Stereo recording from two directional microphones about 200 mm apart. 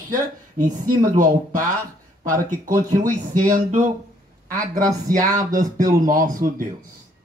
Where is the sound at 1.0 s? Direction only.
40° right (ahead or behind).